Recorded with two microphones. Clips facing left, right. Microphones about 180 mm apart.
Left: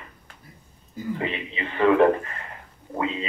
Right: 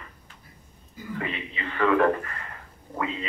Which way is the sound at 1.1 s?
25° left (ahead or behind).